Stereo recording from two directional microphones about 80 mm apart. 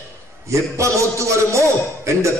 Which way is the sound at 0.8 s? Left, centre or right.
Right.